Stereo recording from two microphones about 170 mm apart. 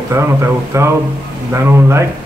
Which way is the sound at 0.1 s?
15° right (ahead or behind).